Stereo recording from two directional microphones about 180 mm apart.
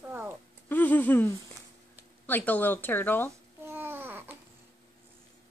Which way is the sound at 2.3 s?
10° left (ahead or behind).